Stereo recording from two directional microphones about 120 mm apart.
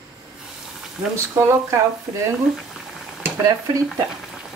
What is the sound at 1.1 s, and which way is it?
Speech, 25° right (ahead or behind).